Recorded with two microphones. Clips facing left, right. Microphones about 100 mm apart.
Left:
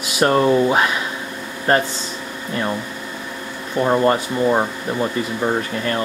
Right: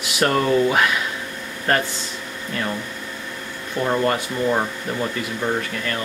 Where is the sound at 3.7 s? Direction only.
20° left (ahead or behind).